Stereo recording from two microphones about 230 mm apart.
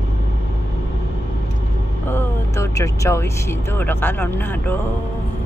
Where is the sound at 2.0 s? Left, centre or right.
Centre.